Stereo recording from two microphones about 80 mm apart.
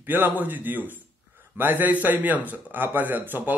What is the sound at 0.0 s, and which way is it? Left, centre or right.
A man's voice, right.